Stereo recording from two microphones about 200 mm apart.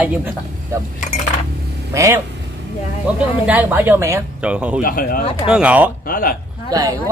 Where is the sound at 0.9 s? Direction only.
35° left (ahead or behind).